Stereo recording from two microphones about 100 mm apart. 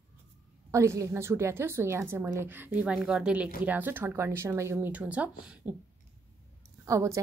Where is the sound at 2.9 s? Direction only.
5° right (ahead or behind).